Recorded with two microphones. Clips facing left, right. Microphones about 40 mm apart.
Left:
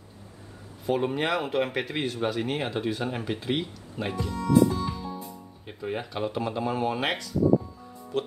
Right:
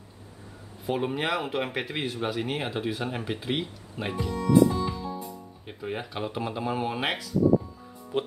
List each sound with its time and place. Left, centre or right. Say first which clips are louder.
0.8 s speech: left 2 dB; centre